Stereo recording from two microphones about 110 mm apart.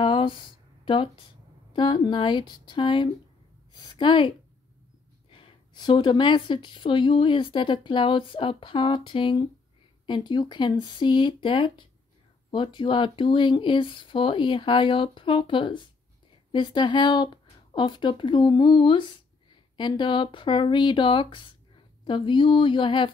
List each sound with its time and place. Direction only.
0.0 s a sound: 45° left (ahead or behind)
1.7 s speech: 45° left (ahead or behind)
5.3 s speech: 50° left (ahead or behind)